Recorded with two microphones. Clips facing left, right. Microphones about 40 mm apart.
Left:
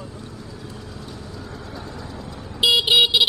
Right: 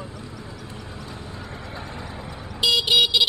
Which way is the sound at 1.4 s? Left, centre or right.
Right.